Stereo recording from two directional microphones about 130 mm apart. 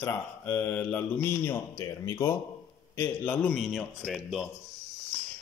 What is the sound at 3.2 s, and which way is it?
Speech, 10° left (ahead or behind).